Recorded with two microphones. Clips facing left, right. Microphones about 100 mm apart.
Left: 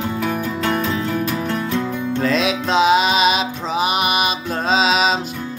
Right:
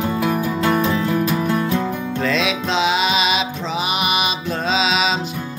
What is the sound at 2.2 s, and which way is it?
Music, 40° left (ahead or behind).